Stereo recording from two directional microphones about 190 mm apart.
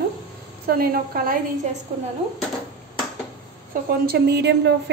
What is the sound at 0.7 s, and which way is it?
Speech, 50° right (ahead or behind).